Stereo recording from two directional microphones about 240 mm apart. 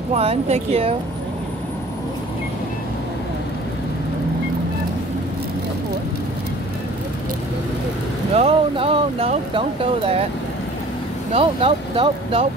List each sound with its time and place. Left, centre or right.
0.1 s speech: right
8.4 s speech: right
11.3 s speech: right